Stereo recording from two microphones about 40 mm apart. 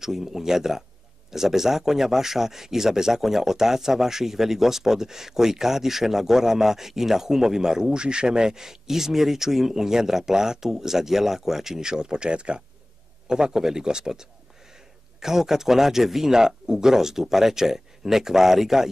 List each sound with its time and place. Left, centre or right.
0.0 s speech: centre